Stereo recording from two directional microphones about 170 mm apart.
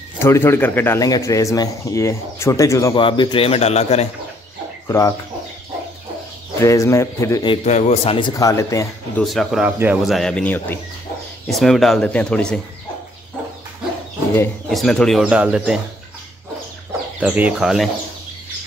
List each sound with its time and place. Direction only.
0.2 s speech: 15° left (ahead or behind); by 4.1 s 40° left (ahead or behind)
4.8 s speech: 20° left (ahead or behind)
6.6 s a man's voice: 20° left (ahead or behind)
7.4 s speech: 40° left (ahead or behind)
8.4 s a man's voice: 20° left (ahead or behind)
9.2 s a man's voice: centre (ahead or behind)
14.7 s speech: centre (ahead or behind)
17.2 s speech: 10° right (ahead or behind)